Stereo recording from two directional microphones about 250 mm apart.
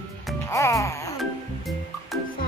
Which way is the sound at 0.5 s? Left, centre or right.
Centre.